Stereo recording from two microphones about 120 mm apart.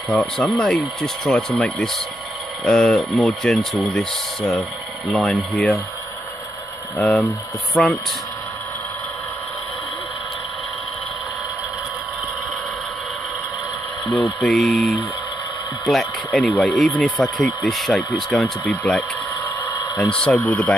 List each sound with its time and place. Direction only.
0.1 s speech: 5° left (ahead or behind)
7.0 s speech: 5° left (ahead or behind)
14.1 s speech: centre (ahead or behind)
19.6 s a sound: 30° left (ahead or behind)
20.1 s speech: 10° left (ahead or behind)